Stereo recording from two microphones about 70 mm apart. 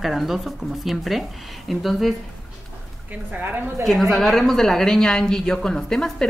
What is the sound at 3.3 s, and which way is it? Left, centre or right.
Speech, right.